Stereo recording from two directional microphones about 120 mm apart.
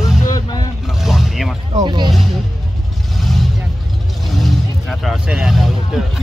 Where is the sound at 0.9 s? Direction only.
Centre (ahead or behind).